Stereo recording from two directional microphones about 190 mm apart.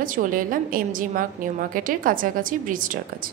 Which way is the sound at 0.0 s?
45° right (ahead or behind).